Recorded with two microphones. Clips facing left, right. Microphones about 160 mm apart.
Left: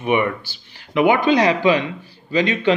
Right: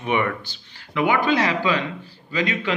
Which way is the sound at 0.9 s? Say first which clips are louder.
Left 5 dB; 20° left (ahead or behind).